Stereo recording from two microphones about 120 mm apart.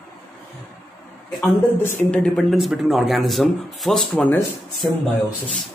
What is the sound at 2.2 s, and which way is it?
A man's voice, 5° left (ahead or behind).